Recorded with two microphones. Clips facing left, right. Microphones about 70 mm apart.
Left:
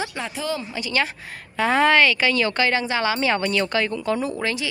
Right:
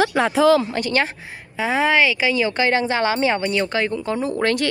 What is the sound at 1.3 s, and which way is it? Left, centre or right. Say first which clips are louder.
A woman's voice: left 1 dB; centre.